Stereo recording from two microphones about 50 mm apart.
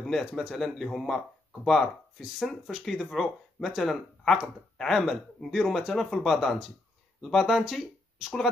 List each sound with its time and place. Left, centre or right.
0.0 s speech: centre